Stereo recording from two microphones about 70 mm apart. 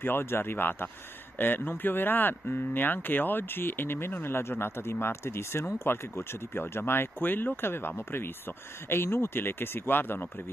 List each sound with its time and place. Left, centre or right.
0.0 s speech: left